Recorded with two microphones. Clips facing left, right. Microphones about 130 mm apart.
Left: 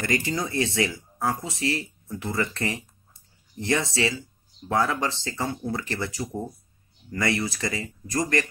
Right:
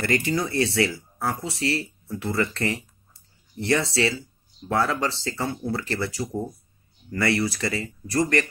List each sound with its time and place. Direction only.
0.0 s speech: 20° left (ahead or behind)